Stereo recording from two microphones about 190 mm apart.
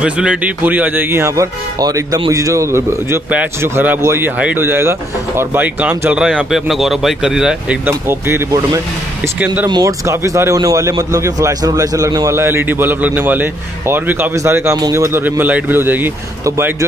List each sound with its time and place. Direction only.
0.0 s speech: 5° right (ahead or behind)